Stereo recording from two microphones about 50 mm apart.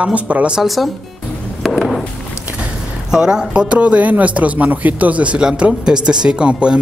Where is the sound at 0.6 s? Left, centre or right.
Centre.